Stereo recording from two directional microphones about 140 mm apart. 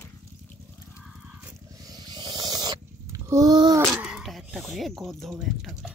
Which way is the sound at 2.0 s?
30° right (ahead or behind).